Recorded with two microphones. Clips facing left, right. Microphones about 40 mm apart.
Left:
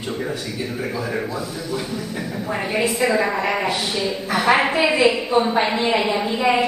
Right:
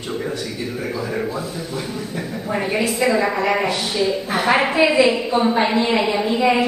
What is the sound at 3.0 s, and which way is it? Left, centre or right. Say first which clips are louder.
A woman's voice: right 3 dB; centre.